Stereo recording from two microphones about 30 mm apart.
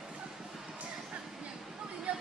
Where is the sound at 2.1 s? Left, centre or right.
Right.